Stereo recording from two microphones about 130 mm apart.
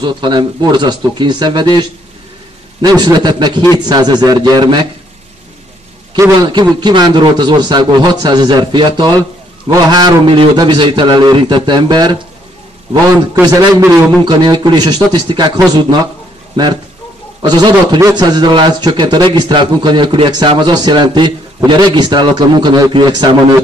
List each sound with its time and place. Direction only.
0.0 s a man's voice: 35° right (ahead or behind)
2.8 s a man's voice: 30° right (ahead or behind)
6.1 s a man's voice: 25° right (ahead or behind)
6.5 s a man's voice: 35° right (ahead or behind)
13.3 s a man's voice: 30° right (ahead or behind)
17.4 s a man's voice: 35° right (ahead or behind)